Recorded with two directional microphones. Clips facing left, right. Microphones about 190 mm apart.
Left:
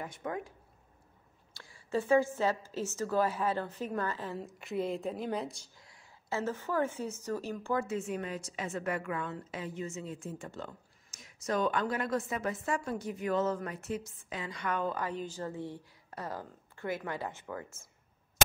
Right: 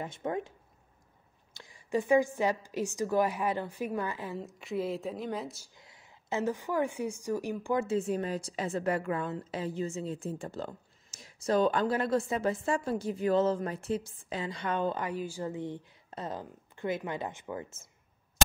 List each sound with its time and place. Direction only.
0.0 s speech: 25° right (ahead or behind)
1.5 s a woman's voice: 20° right (ahead or behind)
4.4 s speech: centre (ahead or behind)
5.8 s a woman's voice: 20° right (ahead or behind)
7.8 s a woman's voice: 30° right (ahead or behind)
15.0 s speech: 10° right (ahead or behind)